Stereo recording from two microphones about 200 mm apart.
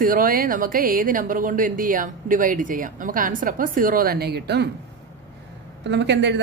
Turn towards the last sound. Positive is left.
turn(degrees=-60)  # may be behind; listen again after turning